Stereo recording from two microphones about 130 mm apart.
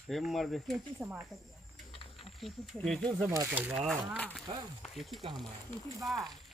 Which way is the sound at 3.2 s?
25° right (ahead or behind).